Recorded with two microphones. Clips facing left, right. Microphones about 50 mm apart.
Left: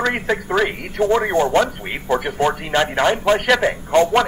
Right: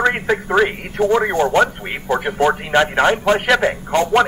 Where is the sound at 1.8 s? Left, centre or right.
Centre.